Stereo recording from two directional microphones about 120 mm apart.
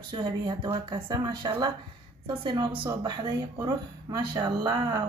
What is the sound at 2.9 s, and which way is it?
A woman's voice, 30° right (ahead or behind).